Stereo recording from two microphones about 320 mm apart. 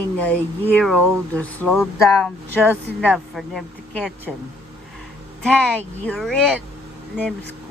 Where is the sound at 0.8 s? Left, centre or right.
Centre.